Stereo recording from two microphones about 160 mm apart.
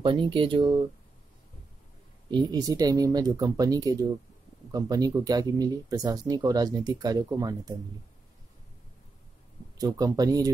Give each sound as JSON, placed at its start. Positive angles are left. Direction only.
{"t": 0.0, "sound": "speech", "side_deg": -30}
{"t": 2.3, "sound": "speech", "side_deg": -25}
{"t": 9.8, "sound": "speech", "side_deg": -25}